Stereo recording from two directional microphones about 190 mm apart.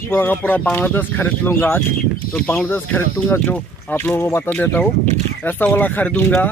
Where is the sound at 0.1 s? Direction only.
10° left (ahead or behind).